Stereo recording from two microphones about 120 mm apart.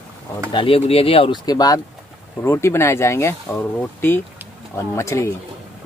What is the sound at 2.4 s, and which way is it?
Speech, 20° left (ahead or behind).